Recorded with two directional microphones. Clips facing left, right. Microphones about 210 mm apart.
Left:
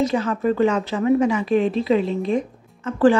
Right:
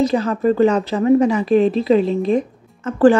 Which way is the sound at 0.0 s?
35° right (ahead or behind).